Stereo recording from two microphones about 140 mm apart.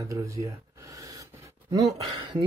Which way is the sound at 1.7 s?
30° right (ahead or behind).